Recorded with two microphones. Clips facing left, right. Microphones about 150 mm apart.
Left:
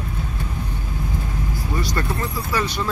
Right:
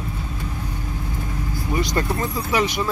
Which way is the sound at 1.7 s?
20° right (ahead or behind).